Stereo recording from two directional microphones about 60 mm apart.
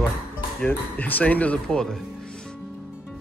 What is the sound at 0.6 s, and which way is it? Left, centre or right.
Speech, left.